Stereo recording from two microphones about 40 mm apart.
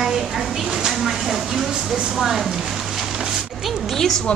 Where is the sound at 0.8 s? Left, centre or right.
Centre.